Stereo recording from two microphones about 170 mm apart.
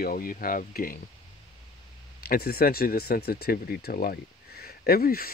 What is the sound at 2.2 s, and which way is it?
Speech, 65° left (ahead or behind).